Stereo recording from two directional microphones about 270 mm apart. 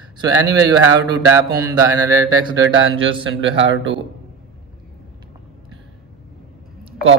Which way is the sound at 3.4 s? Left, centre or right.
Right.